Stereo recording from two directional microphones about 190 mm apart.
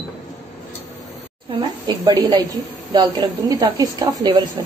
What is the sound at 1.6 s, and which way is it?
A woman's voice, 20° right (ahead or behind).